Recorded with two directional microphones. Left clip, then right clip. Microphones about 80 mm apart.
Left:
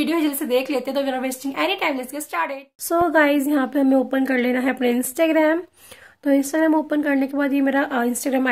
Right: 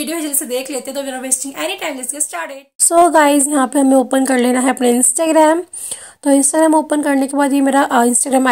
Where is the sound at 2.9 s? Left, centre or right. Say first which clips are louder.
Right 7 dB; right.